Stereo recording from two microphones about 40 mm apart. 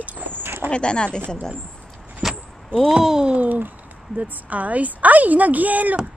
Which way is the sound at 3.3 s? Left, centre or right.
Right.